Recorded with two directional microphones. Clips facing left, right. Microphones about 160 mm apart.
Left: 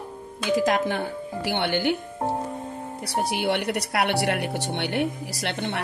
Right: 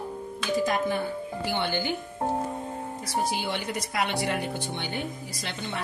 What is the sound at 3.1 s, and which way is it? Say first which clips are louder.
Speech: left 4 dB; 65° left (ahead or behind).